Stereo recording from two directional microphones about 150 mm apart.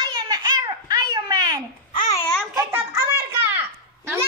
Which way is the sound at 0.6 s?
25° right (ahead or behind).